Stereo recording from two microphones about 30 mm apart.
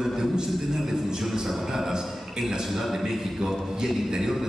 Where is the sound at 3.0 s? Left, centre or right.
Centre.